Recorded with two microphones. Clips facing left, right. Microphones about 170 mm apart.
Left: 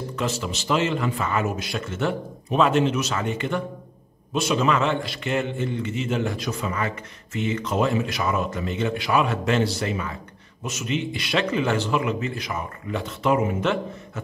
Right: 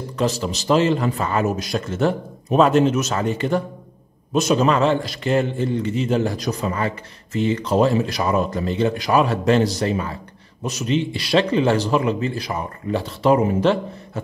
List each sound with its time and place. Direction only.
0.1 s a man's voice: 35° right (ahead or behind)